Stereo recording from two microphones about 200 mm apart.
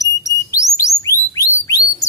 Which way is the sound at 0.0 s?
15° left (ahead or behind).